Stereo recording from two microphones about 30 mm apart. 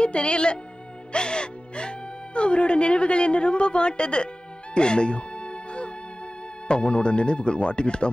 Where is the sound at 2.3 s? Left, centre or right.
Left.